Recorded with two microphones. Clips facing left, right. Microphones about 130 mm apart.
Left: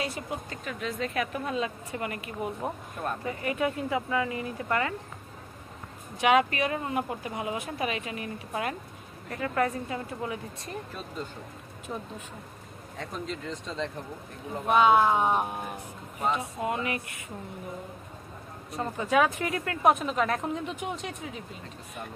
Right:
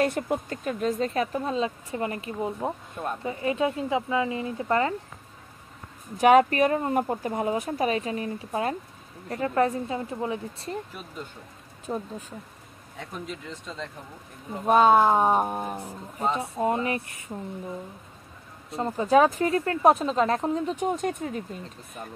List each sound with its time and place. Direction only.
0.0 s speech: 50° right (ahead or behind); by 4.9 s 30° right (ahead or behind)
6.1 s speech: 40° right (ahead or behind)
11.9 s speech: 35° right (ahead or behind)
12.9 s speech: 10° right (ahead or behind)
14.7 s speech: 40° right (ahead or behind)
18.7 s speech: 30° right (ahead or behind); by 21.4 s 50° right (ahead or behind)